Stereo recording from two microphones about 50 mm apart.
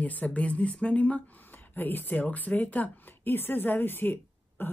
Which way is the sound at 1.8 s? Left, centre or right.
Left.